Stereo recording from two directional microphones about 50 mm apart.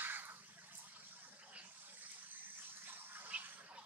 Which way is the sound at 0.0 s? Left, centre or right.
Right.